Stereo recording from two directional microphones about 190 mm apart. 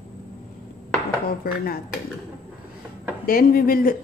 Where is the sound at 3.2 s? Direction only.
50° left (ahead or behind).